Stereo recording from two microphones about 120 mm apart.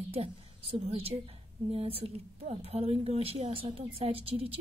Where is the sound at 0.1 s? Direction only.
55° right (ahead or behind).